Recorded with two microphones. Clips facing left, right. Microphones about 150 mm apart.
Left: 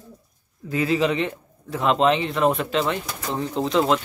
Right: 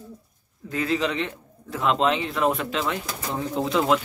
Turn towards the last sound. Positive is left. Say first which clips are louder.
# left 1 dB
turn(degrees=-5)  # may be behind; listen again after turning